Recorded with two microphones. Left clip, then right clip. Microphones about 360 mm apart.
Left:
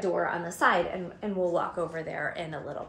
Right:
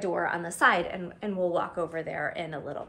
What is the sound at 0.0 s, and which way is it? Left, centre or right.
A woman's voice, right.